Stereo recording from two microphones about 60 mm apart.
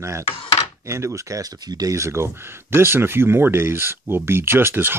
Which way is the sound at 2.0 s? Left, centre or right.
Right.